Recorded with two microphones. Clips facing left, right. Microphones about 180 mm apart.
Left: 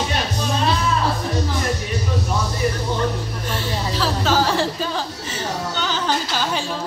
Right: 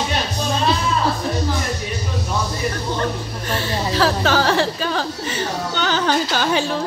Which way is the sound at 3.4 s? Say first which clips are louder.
Right 4 dB; 70° right (ahead or behind).